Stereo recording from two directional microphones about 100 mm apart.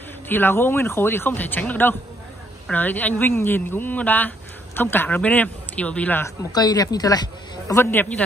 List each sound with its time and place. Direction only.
0.3 s speech: 20° left (ahead or behind)
6.5 s a man's voice: 40° left (ahead or behind); by 8.1 s 20° left (ahead or behind)